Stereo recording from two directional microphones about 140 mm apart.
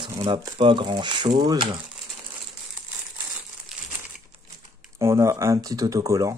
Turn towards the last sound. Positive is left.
turn(degrees=-25)  # may be behind; listen again after turning